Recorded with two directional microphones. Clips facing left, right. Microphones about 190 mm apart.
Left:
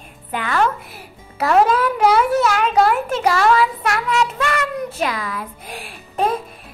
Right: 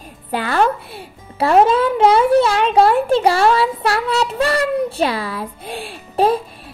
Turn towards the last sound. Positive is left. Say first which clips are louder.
# right 5 dB
turn(degrees=-30)  # may be behind; listen again after turning